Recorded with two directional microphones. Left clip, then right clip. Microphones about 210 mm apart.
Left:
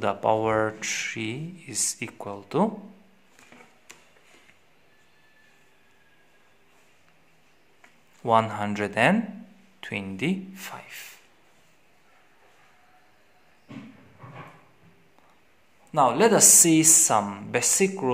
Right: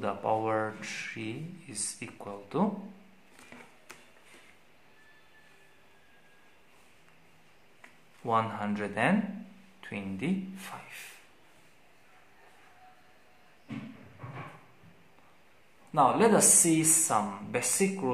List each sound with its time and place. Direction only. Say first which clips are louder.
0.0 s speech: left 7 dB; 45° left (ahead or behind)
8.2 s speech: left 7 dB; 45° left (ahead or behind)
15.9 s speech: left 4 dB; 45° left (ahead or behind)